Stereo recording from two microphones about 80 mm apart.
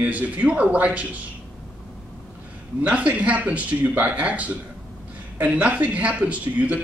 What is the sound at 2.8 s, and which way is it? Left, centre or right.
A man's voice, centre.